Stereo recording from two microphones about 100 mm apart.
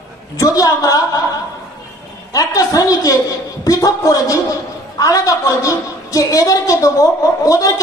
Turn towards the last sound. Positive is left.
turn(degrees=35)  # may be behind; listen again after turning